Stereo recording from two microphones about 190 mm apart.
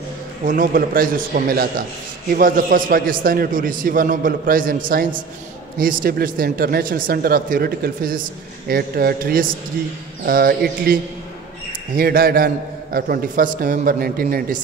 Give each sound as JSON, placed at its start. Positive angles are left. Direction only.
{"t": 0.5, "sound": "a man's voice", "side_deg": -45}